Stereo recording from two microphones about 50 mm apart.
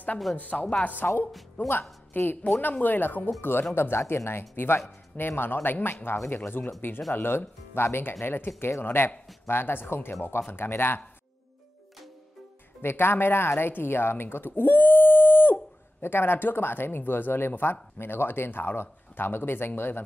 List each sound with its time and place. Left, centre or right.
0.4 s a woman's voice: left
3.3 s speech: left
8.5 s speech: left
12.8 s speech: left